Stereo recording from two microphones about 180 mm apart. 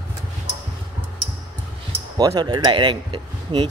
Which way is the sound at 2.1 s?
20° right (ahead or behind).